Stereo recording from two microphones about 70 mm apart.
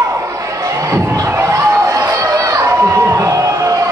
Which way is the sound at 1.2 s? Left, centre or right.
Right.